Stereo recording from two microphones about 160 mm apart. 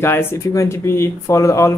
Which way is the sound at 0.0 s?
15° left (ahead or behind).